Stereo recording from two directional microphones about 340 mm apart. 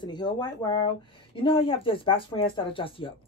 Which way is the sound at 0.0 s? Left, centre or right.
Centre.